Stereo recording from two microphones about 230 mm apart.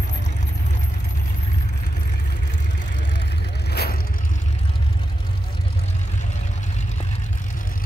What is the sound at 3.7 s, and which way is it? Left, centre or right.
Vehicle, left.